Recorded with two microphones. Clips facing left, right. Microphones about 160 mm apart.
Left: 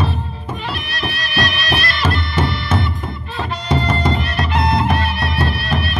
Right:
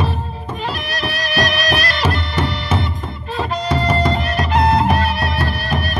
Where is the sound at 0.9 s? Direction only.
40° right (ahead or behind).